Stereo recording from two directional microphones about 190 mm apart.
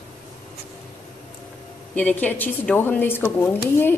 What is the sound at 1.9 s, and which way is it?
Speech, 5° left (ahead or behind).